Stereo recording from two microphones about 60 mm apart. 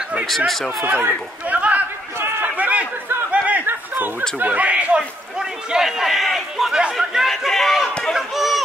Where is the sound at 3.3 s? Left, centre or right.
Right.